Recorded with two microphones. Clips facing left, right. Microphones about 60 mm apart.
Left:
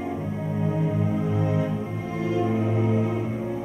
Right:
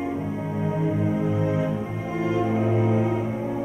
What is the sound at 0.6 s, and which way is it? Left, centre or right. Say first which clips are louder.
Music: right 1 dB; centre.